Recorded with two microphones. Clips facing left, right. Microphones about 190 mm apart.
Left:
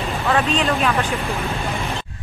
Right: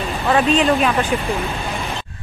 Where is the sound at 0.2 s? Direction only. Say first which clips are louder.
Right 3 dB; 15° right (ahead or behind).